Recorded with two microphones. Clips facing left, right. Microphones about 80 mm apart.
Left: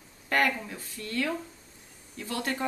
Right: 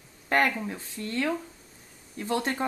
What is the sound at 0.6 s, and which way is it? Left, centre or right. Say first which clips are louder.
Speech: right 4 dB; right.